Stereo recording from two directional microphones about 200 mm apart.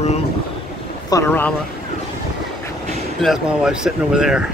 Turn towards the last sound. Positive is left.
turn(degrees=-5)  # may be behind; listen again after turning